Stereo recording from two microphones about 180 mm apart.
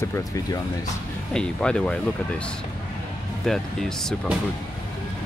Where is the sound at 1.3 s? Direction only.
5° left (ahead or behind).